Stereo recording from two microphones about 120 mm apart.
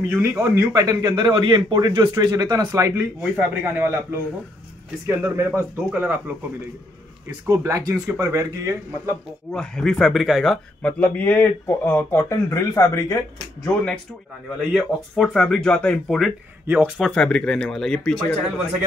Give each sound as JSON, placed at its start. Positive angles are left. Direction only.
{"t": 0.1, "sound": "a man's voice", "side_deg": -15}
{"t": 3.2, "sound": "a man's voice", "side_deg": -10}
{"t": 7.4, "sound": "speech", "side_deg": -25}
{"t": 9.5, "sound": "speech", "side_deg": 5}
{"t": 10.8, "sound": "speech", "side_deg": 10}
{"t": 14.6, "sound": "speech", "side_deg": 0}
{"t": 16.6, "sound": "a man's voice", "side_deg": -15}
{"t": 17.0, "sound": "speech", "side_deg": 5}